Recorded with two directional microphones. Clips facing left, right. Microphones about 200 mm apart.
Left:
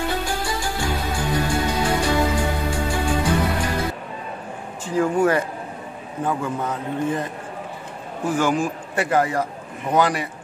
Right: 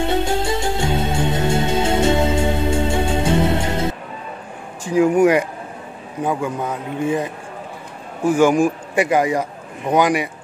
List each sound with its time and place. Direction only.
0.0 s music: 25° right (ahead or behind)
4.8 s speech: 15° right (ahead or behind)
8.3 s speech: 15° right (ahead or behind)